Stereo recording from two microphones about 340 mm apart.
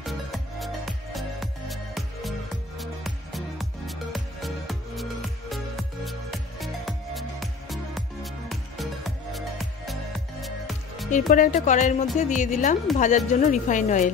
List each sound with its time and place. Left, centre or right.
0.0 s music: centre
11.1 s speech: left